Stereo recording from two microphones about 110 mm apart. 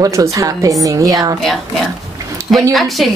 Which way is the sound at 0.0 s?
30° right (ahead or behind).